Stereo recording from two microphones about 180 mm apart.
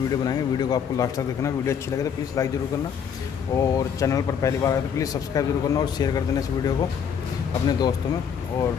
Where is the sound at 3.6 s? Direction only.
20° left (ahead or behind).